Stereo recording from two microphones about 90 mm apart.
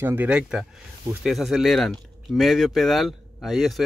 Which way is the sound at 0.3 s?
10° right (ahead or behind).